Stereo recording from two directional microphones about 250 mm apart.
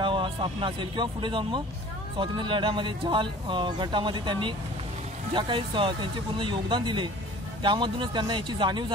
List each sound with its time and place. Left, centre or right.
0.0 s speech: centre